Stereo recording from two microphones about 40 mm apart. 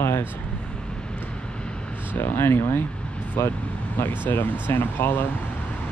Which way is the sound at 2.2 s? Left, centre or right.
Left.